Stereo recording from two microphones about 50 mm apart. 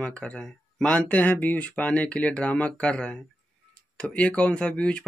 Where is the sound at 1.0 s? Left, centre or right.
Left.